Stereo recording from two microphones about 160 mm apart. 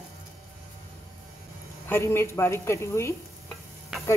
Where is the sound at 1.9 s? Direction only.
15° left (ahead or behind).